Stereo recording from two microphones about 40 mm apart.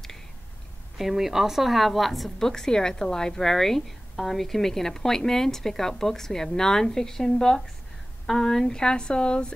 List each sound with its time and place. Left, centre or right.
0.9 s a woman's voice: centre
2.3 s a woman's voice: centre